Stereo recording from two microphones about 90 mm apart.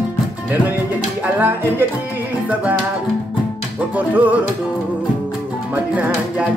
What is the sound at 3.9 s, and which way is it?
Music, 20° right (ahead or behind).